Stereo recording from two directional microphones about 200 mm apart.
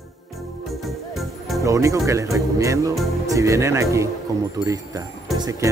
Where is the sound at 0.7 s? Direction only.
Centre (ahead or behind).